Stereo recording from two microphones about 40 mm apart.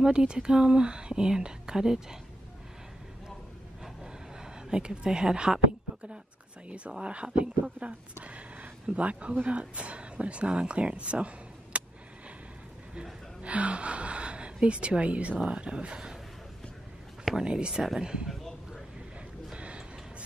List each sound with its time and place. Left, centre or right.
0.0 s speech: centre
4.6 s speech: centre
7.0 s speech: right
13.4 s speech: right
17.2 s a sound: centre
17.5 s speech: right
19.5 s music: right